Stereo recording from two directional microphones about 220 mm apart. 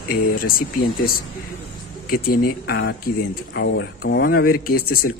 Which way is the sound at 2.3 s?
45° left (ahead or behind).